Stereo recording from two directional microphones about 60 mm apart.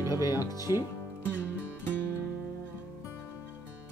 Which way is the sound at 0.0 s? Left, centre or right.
Right.